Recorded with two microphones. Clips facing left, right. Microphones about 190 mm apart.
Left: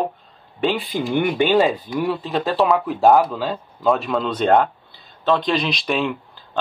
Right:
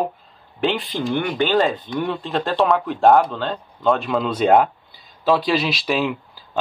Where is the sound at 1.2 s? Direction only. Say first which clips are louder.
Left 3 dB; 15° left (ahead or behind).